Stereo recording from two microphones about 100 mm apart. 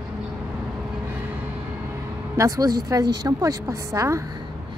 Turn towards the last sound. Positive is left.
turn(degrees=-30)  # may be behind; listen again after turning